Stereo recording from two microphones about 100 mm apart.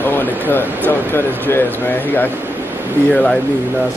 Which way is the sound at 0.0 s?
20° left (ahead or behind).